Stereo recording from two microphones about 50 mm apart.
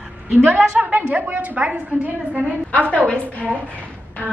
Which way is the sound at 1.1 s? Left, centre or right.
Right.